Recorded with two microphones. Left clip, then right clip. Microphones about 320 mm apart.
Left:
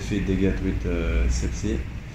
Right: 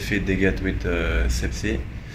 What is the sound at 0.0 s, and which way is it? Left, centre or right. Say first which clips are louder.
Speech: right 3 dB; right.